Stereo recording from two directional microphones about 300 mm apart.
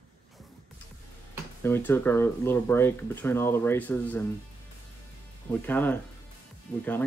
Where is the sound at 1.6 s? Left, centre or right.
Centre.